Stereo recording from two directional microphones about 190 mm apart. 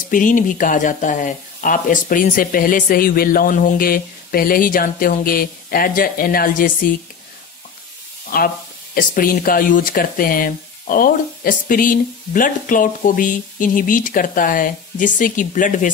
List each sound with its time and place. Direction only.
0.1 s speech: 45° left (ahead or behind)
8.3 s speech: 50° left (ahead or behind)